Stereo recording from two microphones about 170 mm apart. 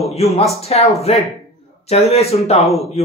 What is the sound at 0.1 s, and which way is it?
Speech, 35° left (ahead or behind).